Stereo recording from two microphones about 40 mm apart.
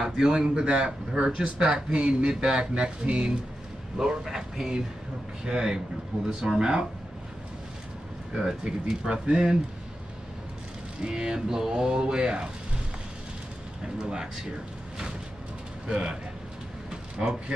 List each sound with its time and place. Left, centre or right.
0.0 s speech: centre
8.4 s speech: centre
11.0 s speech: right
14.0 s speech: centre
15.9 s speech: centre
16.9 s a sound: right